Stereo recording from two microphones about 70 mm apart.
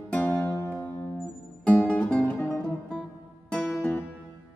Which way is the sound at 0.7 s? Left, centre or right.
Left.